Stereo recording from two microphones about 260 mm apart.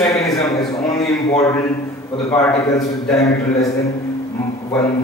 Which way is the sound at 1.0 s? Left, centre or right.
Centre.